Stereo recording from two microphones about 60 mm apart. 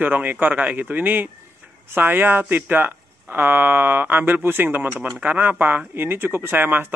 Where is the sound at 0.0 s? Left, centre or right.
Right.